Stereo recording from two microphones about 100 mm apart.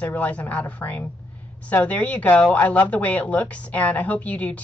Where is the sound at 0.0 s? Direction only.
15° left (ahead or behind).